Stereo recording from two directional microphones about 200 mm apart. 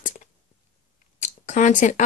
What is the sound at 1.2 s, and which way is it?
Speech, 40° left (ahead or behind).